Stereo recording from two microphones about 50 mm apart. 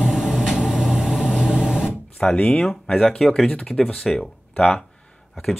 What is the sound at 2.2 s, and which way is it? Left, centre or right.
Speech, centre.